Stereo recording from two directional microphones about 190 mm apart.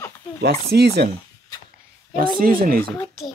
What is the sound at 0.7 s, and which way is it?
Speech, 60° right (ahead or behind).